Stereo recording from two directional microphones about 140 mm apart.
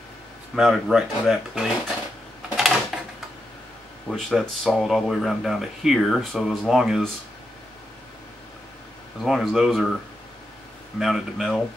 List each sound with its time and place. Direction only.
0.6 s speech: centre (ahead or behind)
2.5 s a sound: 5° right (ahead or behind)
4.1 s speech: centre (ahead or behind)
9.2 s speech: centre (ahead or behind)
11.0 s speech: centre (ahead or behind)